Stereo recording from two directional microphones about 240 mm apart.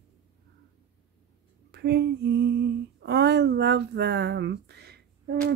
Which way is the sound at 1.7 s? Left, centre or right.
Right.